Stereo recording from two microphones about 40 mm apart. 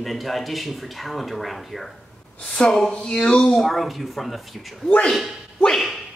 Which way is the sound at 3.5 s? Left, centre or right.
Centre.